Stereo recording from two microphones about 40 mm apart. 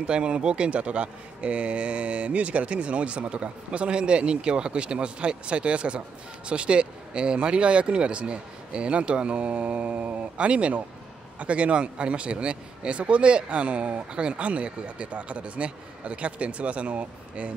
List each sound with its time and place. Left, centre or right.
0.0 s speech: right
10.3 s speech: right